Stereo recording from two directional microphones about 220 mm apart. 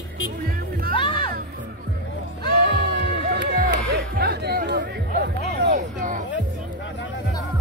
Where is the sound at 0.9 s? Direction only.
25° left (ahead or behind).